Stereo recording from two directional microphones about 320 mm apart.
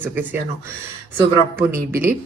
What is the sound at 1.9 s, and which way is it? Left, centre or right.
Speech, centre.